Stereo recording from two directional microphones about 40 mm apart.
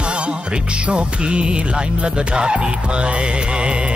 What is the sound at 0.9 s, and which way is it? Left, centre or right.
Speech, right.